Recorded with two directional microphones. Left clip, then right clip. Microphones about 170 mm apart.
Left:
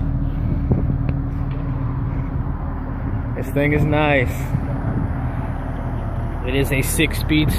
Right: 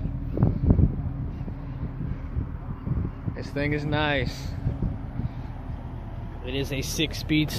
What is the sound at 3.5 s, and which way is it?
Speech, 20° right (ahead or behind).